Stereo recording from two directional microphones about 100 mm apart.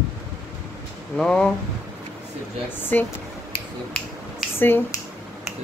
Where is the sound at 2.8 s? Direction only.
20° left (ahead or behind).